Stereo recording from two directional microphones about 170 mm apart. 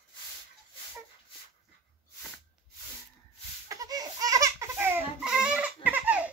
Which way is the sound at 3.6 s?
20° right (ahead or behind).